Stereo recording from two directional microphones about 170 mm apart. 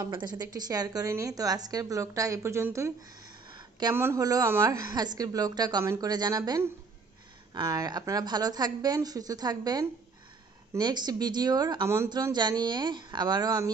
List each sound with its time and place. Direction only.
0.0 s speech: 25° right (ahead or behind)
3.4 s a sound: 25° right (ahead or behind)
3.9 s speech: 15° right (ahead or behind)